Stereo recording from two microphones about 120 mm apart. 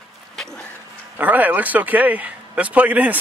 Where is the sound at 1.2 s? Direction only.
15° right (ahead or behind).